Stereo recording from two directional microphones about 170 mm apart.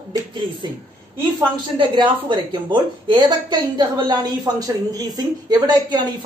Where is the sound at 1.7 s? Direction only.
30° right (ahead or behind).